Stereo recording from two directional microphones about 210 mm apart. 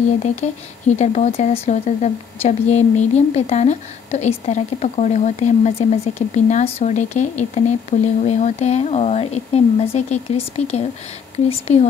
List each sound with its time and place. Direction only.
0.2 s speech: 35° left (ahead or behind)